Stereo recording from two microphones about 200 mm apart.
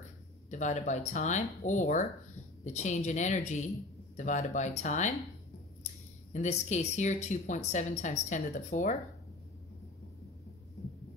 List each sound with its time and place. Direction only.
0.5 s speech: 35° left (ahead or behind)
6.3 s speech: 35° left (ahead or behind)